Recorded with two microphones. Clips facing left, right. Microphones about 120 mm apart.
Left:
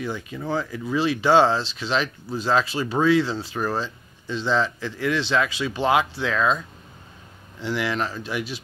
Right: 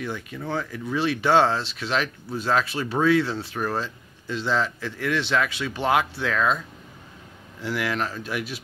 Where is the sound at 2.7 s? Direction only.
Centre (ahead or behind).